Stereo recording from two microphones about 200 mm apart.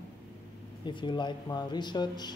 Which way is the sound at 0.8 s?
25° left (ahead or behind).